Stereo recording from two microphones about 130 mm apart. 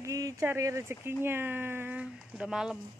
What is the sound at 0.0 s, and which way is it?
Speech, 25° right (ahead or behind).